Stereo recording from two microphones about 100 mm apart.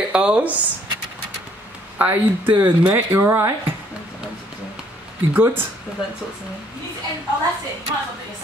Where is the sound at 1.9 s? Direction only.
20° right (ahead or behind).